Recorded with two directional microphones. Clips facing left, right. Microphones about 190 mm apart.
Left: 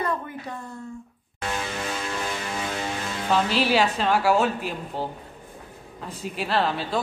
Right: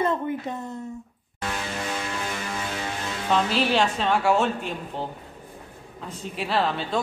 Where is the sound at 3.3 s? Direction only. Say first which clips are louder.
Even; centre (ahead or behind).